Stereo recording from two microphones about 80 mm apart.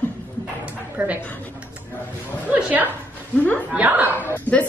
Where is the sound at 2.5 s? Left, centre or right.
Centre.